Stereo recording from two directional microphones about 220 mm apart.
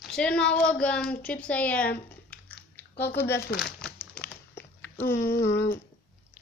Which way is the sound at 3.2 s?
10° left (ahead or behind).